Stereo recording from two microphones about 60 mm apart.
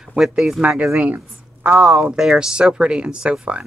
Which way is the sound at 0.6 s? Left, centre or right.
Right.